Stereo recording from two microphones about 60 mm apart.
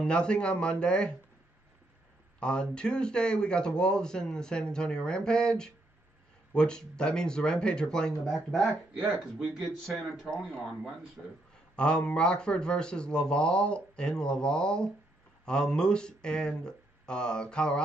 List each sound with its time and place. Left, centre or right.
0.0 s speech: centre
2.4 s speech: centre
8.9 s speech: centre
9.8 s speech: centre
11.7 s speech: centre